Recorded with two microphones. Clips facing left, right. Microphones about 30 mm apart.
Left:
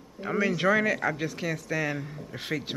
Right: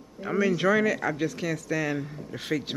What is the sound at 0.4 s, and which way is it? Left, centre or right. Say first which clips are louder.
Speech: right 1 dB; centre.